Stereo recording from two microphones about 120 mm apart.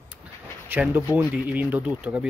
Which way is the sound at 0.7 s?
15° right (ahead or behind).